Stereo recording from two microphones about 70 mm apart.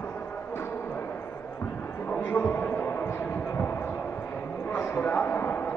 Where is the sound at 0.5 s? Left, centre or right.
Left.